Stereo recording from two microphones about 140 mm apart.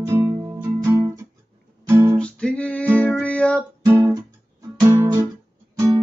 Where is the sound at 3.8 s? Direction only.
15° right (ahead or behind).